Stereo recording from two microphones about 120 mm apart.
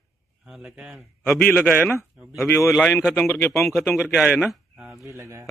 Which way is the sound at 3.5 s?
5° left (ahead or behind).